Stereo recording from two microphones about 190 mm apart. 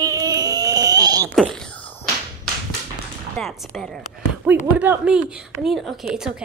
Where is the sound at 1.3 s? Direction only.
Centre (ahead or behind).